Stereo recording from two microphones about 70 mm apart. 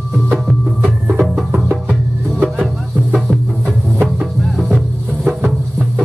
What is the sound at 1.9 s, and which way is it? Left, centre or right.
Music, centre.